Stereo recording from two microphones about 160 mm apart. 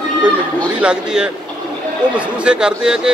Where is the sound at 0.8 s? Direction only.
5° right (ahead or behind).